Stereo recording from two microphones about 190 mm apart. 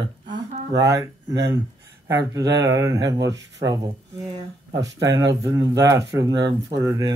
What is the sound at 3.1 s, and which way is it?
Speech, 70° right (ahead or behind).